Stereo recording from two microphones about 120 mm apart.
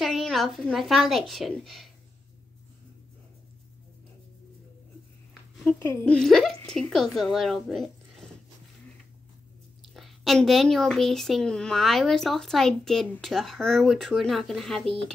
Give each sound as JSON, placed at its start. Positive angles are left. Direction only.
{"t": 0.0, "sound": "speech", "side_deg": 0}
{"t": 5.7, "sound": "a woman's voice", "side_deg": 15}
{"t": 6.1, "sound": "speech", "side_deg": 0}
{"t": 9.8, "sound": "speech", "side_deg": 0}